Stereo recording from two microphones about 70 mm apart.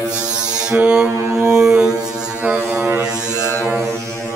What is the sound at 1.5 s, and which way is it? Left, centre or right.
Foghorn, centre.